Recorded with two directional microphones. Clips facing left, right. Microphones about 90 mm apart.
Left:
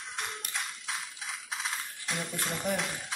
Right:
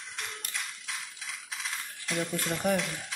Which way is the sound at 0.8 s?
25° left (ahead or behind).